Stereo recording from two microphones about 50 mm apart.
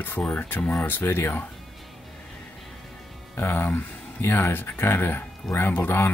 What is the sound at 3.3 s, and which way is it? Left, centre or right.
Speech, left.